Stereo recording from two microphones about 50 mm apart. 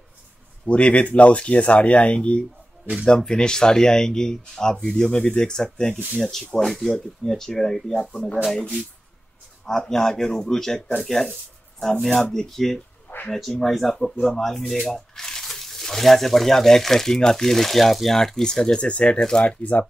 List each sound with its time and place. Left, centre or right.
0.7 s speech: left; by 8.1 s centre
9.7 s speech: centre
19.4 s speech: left